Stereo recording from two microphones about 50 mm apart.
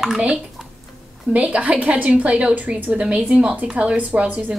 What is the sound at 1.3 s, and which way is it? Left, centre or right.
A woman's voice, right.